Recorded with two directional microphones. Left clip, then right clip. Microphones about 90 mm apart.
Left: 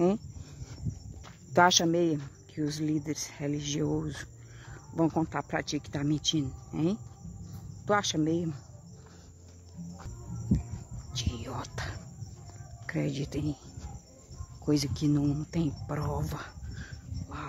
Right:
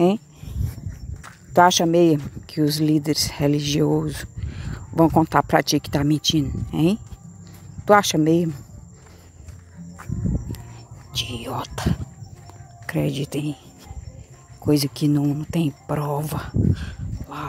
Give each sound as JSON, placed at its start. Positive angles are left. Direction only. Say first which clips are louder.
{"t": 1.5, "sound": "speech", "louder": "right 8 dB", "side_deg": -15}
{"t": 1.8, "sound": "speech", "louder": "right 9 dB", "side_deg": -40}
{"t": 2.5, "sound": "speech", "louder": "right 12 dB", "side_deg": -60}
{"t": 3.6, "sound": "speech", "louder": "right 11 dB", "side_deg": -55}
{"t": 3.9, "sound": "cricket", "louder": "right 11 dB", "side_deg": -40}
{"t": 5.3, "sound": "speech", "louder": "right 15 dB", "side_deg": -75}
{"t": 11.1, "sound": "speech", "louder": "right 11 dB", "side_deg": -30}
{"t": 14.6, "sound": "speech", "louder": "right 9 dB", "side_deg": -35}